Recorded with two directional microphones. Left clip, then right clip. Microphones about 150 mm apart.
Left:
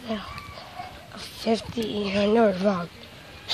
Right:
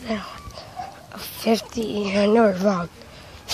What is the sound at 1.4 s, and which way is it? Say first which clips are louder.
Speech: right 4 dB; 25° right (ahead or behind).